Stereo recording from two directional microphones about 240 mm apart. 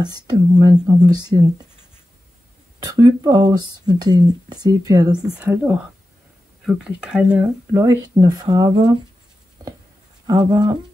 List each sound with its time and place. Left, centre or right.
0.0 s speech: centre
2.8 s speech: centre
10.2 s speech: centre